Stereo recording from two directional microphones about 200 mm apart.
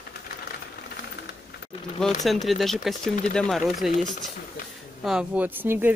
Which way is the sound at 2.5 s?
Centre (ahead or behind).